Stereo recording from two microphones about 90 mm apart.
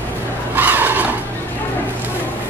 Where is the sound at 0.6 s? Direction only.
20° right (ahead or behind).